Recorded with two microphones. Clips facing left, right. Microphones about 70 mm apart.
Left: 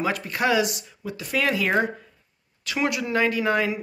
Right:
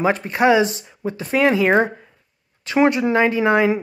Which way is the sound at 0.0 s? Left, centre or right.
Right.